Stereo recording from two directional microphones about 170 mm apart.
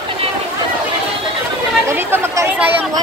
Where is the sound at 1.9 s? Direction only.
15° right (ahead or behind).